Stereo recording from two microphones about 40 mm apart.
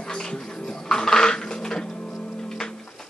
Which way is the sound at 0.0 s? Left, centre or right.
Centre.